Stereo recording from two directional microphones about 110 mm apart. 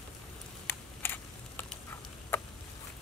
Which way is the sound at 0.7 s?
20° left (ahead or behind).